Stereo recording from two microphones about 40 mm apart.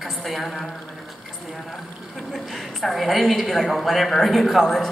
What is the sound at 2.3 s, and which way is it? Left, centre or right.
A woman's voice, centre.